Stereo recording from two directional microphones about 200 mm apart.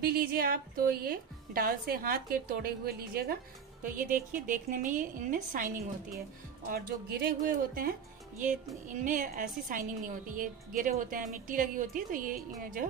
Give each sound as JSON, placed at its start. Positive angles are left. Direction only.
{"t": 0.0, "sound": "a woman's voice", "side_deg": -50}
{"t": 6.7, "sound": "a woman's voice", "side_deg": -50}